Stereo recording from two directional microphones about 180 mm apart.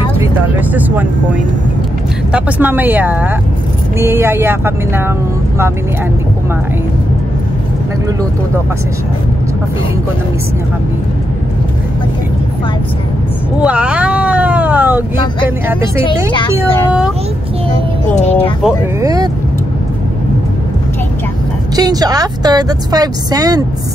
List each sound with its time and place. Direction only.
0.2 s speech: 10° right (ahead or behind)
2.3 s speech: 10° right (ahead or behind)
13.6 s a sound: 5° right (ahead or behind)
16.3 s speech: 25° left (ahead or behind)
18.1 s speech: 35° left (ahead or behind)
18.9 s a woman's voice: 20° right (ahead or behind)
21.7 s a woman's voice: 20° right (ahead or behind)